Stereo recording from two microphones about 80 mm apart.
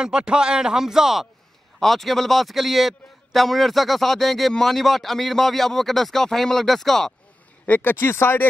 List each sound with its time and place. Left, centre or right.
0.0 s a man's voice: centre
7.6 s speech: left